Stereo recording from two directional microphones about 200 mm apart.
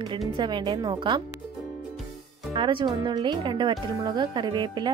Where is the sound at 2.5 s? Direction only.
25° right (ahead or behind).